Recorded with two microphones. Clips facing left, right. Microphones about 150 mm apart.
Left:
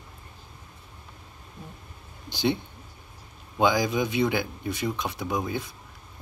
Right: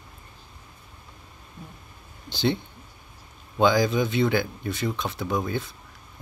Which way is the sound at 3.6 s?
15° left (ahead or behind).